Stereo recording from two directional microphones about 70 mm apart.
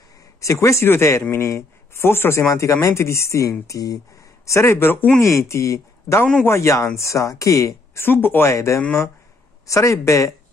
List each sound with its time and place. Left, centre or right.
0.4 s speech: left
4.5 s speech: left
5.4 s speech: left
8.0 s speech: left
8.5 s speech: left